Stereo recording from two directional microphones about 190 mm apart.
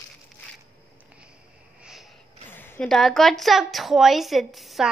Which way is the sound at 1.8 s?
Centre (ahead or behind).